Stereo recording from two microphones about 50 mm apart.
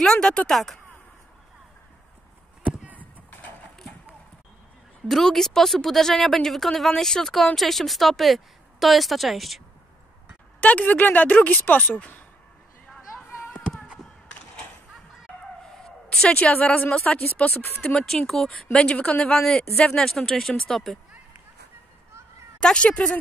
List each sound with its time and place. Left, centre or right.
0.0 s a woman's voice: centre
2.6 s a sound: right
3.0 s a sound: left
5.0 s a woman's voice: centre
10.6 s speech: left
16.3 s a woman's voice: left
17.6 s speech: left
17.9 s a woman's voice: centre
18.9 s a woman's voice: left; by 21.0 s centre
22.6 s a woman's voice: centre